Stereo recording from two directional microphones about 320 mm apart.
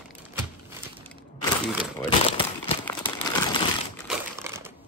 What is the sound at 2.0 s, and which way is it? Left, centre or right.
Crumpling, centre.